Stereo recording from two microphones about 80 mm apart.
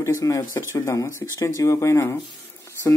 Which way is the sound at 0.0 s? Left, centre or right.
Left.